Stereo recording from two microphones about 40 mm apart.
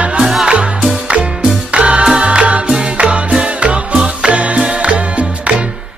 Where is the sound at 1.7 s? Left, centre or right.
Right.